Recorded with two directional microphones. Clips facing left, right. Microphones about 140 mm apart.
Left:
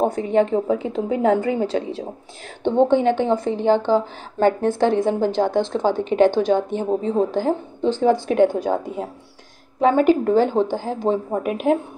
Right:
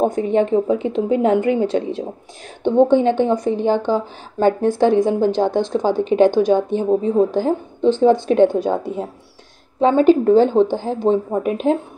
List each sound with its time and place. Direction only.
0.3 s a woman's voice: 20° right (ahead or behind)
9.8 s a woman's voice: 25° right (ahead or behind)